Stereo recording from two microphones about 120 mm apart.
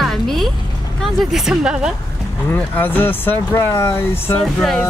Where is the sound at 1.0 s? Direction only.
Centre (ahead or behind).